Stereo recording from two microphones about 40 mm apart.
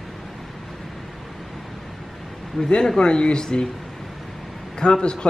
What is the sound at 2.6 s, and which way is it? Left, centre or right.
Speech, left.